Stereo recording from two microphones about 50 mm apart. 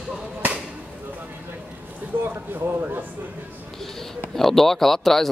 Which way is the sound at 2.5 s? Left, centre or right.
Right.